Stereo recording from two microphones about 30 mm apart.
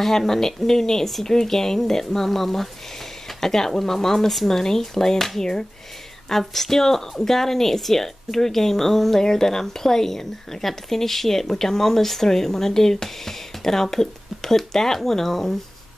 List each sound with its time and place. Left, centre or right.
0.0 s speech: centre